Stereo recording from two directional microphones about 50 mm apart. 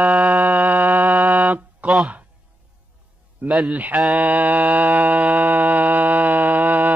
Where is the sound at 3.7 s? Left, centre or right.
Right.